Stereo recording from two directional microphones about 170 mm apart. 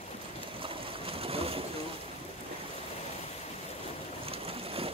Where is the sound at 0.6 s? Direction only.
35° right (ahead or behind).